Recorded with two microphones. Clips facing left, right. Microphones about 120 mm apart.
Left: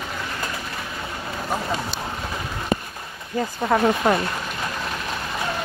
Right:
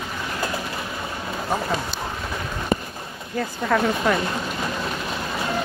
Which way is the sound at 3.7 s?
25° left (ahead or behind).